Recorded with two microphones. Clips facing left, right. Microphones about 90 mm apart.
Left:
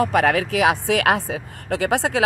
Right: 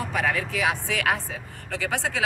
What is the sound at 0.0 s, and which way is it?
Speech, 70° left (ahead or behind).